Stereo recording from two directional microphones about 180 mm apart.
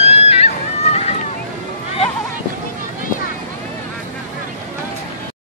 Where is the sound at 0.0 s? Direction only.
35° left (ahead or behind).